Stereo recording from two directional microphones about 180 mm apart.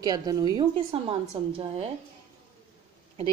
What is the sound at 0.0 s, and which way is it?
A woman's voice, 20° right (ahead or behind).